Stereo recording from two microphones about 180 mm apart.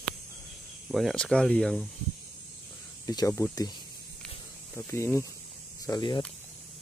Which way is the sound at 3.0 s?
20° left (ahead or behind).